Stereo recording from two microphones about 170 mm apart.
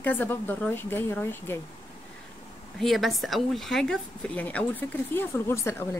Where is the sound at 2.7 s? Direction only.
Centre (ahead or behind).